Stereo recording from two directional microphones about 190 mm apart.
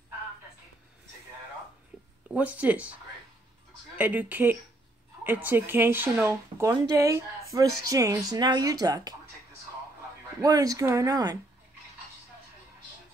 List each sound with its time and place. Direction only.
2.2 s speech: 5° right (ahead or behind)
4.0 s speech: 10° right (ahead or behind)
10.4 s speech: 20° right (ahead or behind)